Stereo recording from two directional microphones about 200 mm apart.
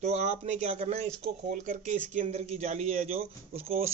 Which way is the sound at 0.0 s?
35° right (ahead or behind).